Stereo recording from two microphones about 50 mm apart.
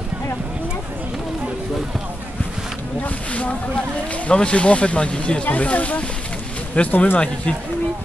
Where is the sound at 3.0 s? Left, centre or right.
Left.